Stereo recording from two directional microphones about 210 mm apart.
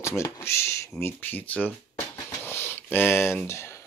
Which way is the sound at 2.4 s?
10° left (ahead or behind).